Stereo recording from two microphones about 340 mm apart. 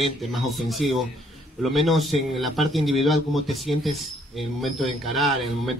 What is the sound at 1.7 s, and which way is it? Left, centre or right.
Speech, centre.